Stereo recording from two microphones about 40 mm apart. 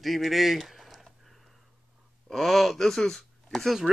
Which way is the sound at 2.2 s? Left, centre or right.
Centre.